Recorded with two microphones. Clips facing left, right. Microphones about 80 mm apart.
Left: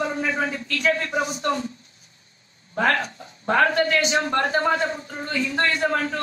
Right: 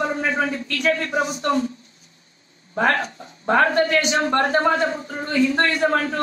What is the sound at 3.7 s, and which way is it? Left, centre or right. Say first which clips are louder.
A woman's voice: right 2 dB; right.